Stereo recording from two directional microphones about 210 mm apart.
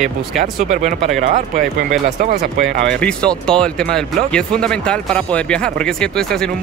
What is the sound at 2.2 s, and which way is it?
Speech, 50° right (ahead or behind).